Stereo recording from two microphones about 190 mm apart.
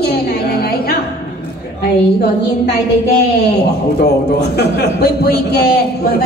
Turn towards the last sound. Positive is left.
turn(degrees=55)  # may be behind; listen again after turning